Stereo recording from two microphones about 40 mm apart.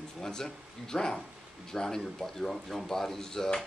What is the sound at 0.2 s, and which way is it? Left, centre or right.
Speech, centre.